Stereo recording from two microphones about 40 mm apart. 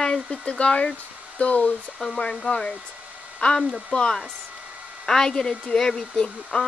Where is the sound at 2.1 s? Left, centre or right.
Centre.